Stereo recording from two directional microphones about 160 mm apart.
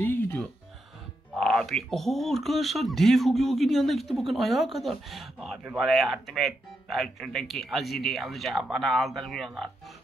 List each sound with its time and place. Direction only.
0.0 s music: 15° left (ahead or behind)
1.3 s speech: centre (ahead or behind)